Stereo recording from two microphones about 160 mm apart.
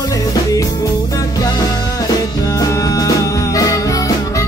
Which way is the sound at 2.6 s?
20° left (ahead or behind).